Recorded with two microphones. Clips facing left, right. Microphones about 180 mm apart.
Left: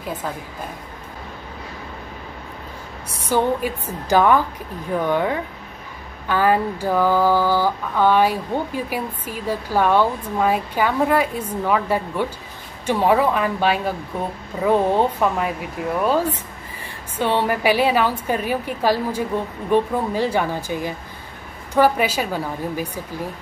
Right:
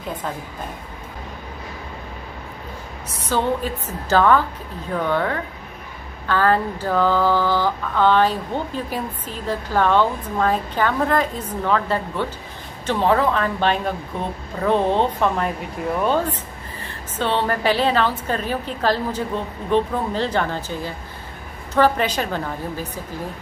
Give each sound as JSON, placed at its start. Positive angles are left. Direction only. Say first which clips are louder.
{"t": 3.3, "sound": "mantra", "louder": "left 2 dB", "side_deg": 10}